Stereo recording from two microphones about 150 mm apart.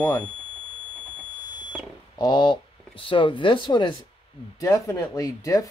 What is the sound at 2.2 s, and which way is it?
Speech, 30° left (ahead or behind).